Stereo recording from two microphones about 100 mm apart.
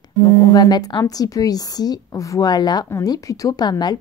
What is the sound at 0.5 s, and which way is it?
A woman's voice, 45° left (ahead or behind).